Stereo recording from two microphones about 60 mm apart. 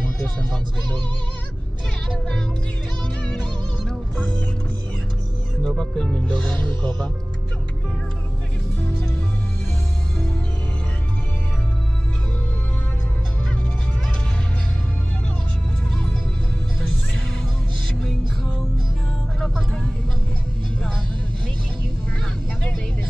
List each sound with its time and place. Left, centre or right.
0.2 s speech: centre
5.6 s speech: centre
15.9 s music: centre